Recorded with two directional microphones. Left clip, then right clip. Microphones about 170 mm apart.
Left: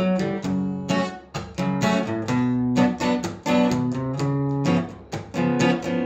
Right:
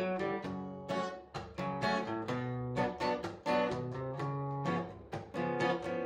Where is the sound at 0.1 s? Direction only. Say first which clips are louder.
Left 10 dB; 10° left (ahead or behind).